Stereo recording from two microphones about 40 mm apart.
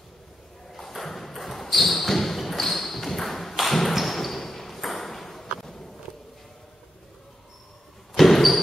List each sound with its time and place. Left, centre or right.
0.7 s a sound: centre
5.6 s walk: centre
8.1 s basketball bounce: centre